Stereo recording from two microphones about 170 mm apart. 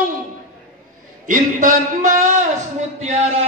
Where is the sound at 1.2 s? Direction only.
50° right (ahead or behind).